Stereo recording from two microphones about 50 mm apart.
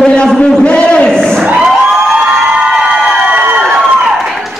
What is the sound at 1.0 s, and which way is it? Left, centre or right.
Speech, centre.